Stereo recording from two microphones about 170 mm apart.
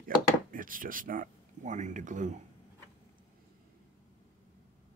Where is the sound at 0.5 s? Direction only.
55° right (ahead or behind).